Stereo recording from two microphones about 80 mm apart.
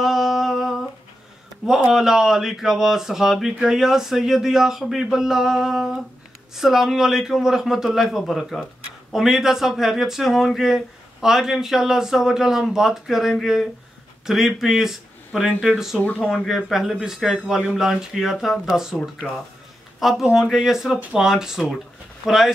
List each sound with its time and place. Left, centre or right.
0.0 s humming: centre
1.7 s speech: centre
16.0 s speech: left
16.3 s speech: centre